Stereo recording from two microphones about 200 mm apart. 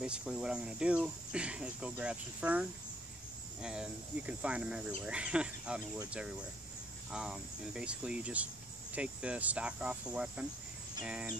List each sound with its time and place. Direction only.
0.0 s speech: 5° right (ahead or behind)